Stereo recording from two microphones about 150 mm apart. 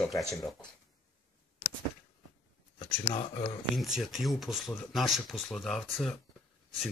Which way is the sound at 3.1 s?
40° left (ahead or behind).